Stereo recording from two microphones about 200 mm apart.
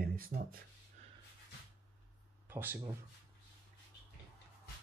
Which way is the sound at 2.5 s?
10° right (ahead or behind).